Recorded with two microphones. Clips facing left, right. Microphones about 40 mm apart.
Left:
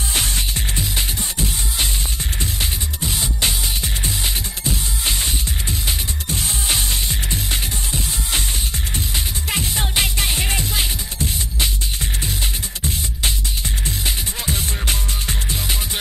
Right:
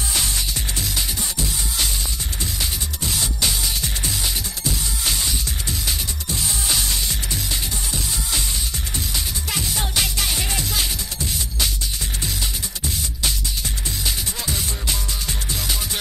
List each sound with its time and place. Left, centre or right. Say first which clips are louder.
0.1 s music: left 3 dB; left
3.0 s music: left 1 dB; left
3.3 s music: left 1 dB; left
7.5 s music: left 2 dB; left
13.8 s music: left 1 dB; left